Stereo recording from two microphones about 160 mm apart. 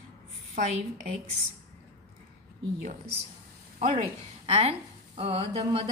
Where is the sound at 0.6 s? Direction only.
55° right (ahead or behind).